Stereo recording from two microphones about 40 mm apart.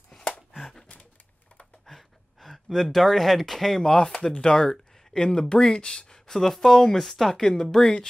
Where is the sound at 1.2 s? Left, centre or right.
Left.